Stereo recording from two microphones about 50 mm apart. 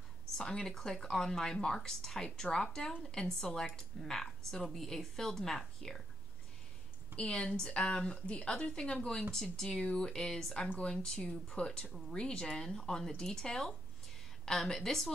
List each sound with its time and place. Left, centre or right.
0.4 s a woman's voice: centre
7.2 s a woman's voice: centre